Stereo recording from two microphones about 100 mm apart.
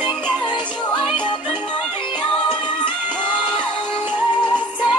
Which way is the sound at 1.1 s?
50° left (ahead or behind).